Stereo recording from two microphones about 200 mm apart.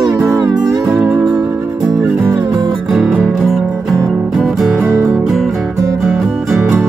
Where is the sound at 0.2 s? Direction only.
15° right (ahead or behind).